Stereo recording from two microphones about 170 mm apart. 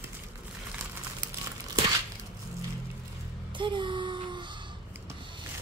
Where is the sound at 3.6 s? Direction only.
30° right (ahead or behind).